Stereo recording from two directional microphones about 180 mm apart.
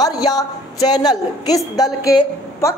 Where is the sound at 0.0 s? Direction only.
20° left (ahead or behind).